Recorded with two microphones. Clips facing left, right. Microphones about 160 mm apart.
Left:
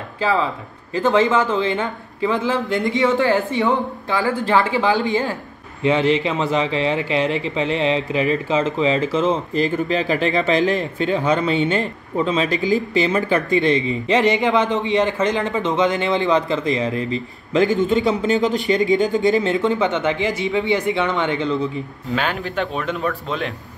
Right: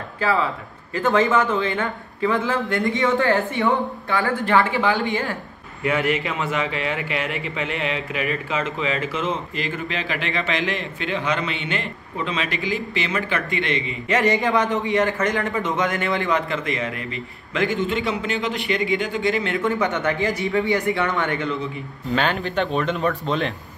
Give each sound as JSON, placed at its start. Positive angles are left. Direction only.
{"t": 0.2, "sound": "a man's voice", "side_deg": 20}
{"t": 19.5, "sound": "a man's voice", "side_deg": 20}
{"t": 22.1, "sound": "speech", "side_deg": 5}